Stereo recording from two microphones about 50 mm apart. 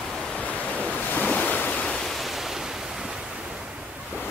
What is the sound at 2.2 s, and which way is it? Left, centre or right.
Waves, centre.